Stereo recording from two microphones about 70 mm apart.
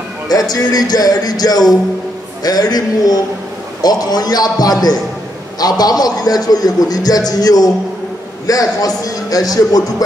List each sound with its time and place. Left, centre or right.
0.3 s a man's voice: left